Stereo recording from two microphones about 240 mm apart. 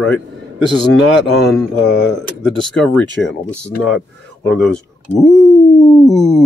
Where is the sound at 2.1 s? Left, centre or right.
Centre.